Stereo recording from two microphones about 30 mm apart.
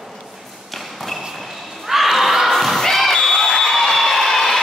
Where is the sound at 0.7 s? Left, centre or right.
Centre.